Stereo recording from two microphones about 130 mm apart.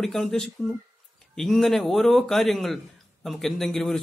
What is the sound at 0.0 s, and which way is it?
Speech, 5° left (ahead or behind).